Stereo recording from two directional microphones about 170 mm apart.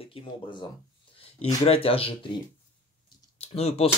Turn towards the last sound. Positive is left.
turn(degrees=35)  # may be behind; listen again after turning